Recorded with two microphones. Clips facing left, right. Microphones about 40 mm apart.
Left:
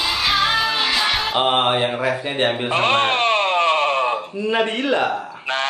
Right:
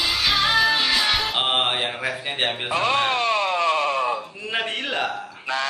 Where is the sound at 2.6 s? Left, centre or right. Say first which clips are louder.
Left 2 dB; left.